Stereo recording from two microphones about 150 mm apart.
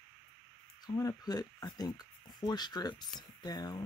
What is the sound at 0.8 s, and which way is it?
Speech, 25° left (ahead or behind).